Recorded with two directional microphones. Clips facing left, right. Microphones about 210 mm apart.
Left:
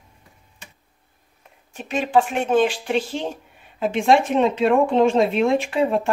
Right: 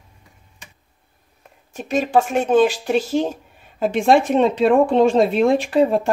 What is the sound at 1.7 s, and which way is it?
Speech, 40° right (ahead or behind).